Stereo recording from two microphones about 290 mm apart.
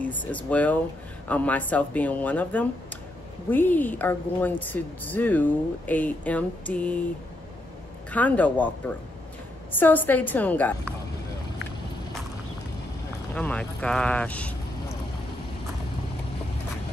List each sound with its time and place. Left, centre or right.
0.0 s a woman's voice: centre
8.1 s a woman's voice: centre
13.3 s a woman's voice: centre